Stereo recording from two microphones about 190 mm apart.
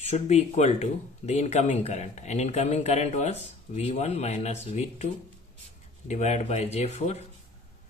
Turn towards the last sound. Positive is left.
turn(degrees=35)  # may be behind; listen again after turning